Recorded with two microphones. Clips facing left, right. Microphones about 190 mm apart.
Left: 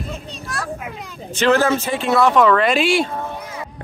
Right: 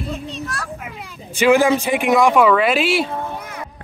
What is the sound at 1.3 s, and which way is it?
Speech, 10° right (ahead or behind).